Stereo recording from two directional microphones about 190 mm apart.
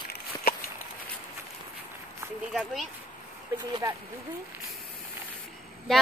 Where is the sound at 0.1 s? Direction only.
50° left (ahead or behind).